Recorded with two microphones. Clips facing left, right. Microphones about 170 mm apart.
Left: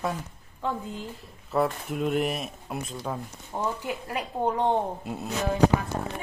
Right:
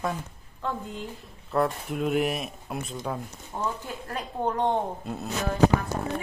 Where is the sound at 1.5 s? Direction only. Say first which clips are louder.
Even; centre (ahead or behind).